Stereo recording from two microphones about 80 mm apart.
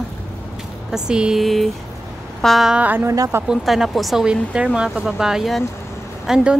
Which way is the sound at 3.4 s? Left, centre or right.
Centre.